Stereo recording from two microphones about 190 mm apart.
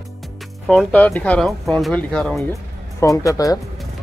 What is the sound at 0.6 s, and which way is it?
Speech, centre (ahead or behind).